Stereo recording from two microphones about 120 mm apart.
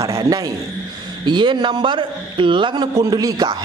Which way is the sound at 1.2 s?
40° right (ahead or behind).